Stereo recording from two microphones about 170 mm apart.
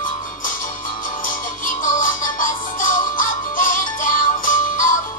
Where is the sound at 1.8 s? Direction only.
50° left (ahead or behind).